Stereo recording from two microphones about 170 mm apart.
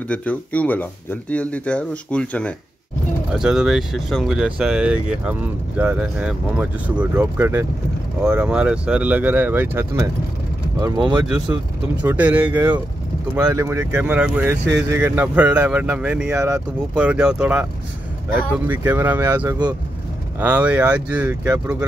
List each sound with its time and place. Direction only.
0.1 s speech: 10° left (ahead or behind)
3.3 s speech: 5° right (ahead or behind)
10.8 s speech: 25° right (ahead or behind)
12.0 s speech: 10° right (ahead or behind)
14.6 s speech: 90° right
14.9 s speech: 15° right (ahead or behind)
18.7 s speech: 10° right (ahead or behind)